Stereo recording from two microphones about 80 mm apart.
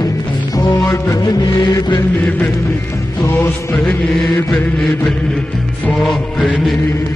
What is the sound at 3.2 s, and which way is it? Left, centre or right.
Music, left.